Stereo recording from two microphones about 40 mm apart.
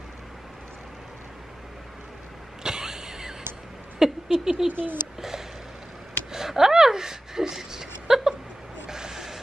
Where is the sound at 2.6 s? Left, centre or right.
Centre.